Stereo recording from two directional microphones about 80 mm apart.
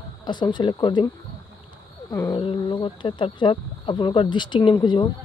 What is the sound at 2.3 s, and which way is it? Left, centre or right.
Speech, left.